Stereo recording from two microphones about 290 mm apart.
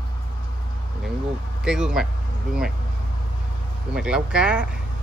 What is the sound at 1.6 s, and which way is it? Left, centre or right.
Speech, centre.